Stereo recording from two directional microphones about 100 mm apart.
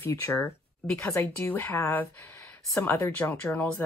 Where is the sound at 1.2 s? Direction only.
20° left (ahead or behind).